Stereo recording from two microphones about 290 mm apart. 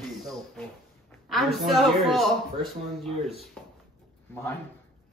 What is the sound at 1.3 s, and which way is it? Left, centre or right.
A woman's voice, centre.